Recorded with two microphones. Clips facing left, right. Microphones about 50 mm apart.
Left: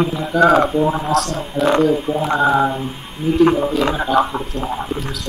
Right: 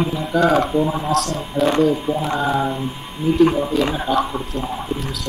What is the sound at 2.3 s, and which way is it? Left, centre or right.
Speech, left.